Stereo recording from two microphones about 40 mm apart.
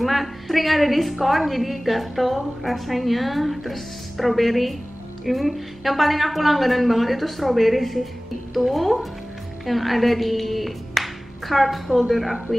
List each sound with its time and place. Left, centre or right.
0.0 s a woman's voice: centre